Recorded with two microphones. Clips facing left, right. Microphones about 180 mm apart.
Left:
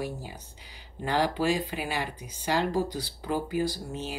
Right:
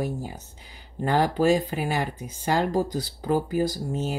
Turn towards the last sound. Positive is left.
turn(degrees=-45)  # may be behind; listen again after turning